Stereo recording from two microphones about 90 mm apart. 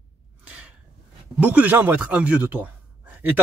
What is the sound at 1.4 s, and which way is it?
A man's voice, 15° right (ahead or behind).